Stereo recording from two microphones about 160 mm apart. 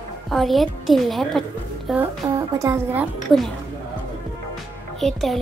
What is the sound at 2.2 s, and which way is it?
A woman's voice, 20° right (ahead or behind).